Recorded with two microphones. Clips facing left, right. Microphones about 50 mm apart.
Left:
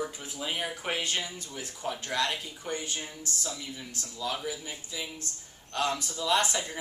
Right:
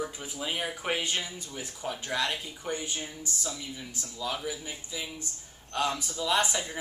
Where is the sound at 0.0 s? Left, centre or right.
Centre.